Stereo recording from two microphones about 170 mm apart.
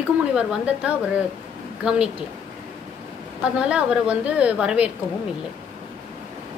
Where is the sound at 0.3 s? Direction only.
5° right (ahead or behind).